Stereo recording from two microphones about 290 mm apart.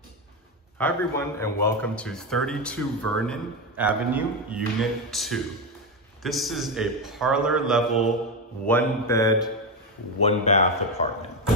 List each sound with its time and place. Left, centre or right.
0.7 s a man's voice: centre
8.6 s mantra: centre
10.2 s a man's voice: left